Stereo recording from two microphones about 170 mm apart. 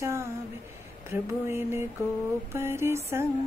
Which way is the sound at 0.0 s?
15° right (ahead or behind).